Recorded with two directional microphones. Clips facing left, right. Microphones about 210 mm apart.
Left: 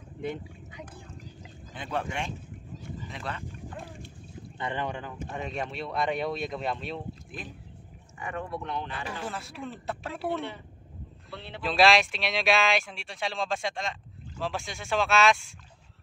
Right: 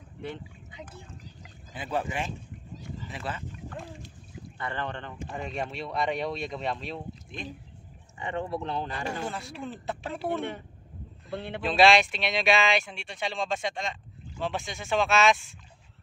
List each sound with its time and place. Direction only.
1.7 s speech: 5° right (ahead or behind)
4.6 s speech: 15° left (ahead or behind)
8.2 s speech: 25° right (ahead or behind)
9.2 s speech: centre (ahead or behind)
11.2 s speech: 50° right (ahead or behind)
11.6 s speech: centre (ahead or behind)